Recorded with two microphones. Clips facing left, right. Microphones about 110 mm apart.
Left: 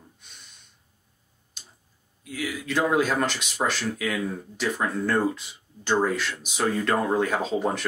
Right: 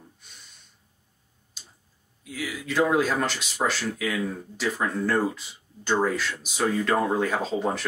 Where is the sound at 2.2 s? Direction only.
Centre (ahead or behind).